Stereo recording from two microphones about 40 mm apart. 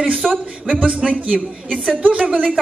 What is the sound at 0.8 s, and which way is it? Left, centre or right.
A woman's voice, right.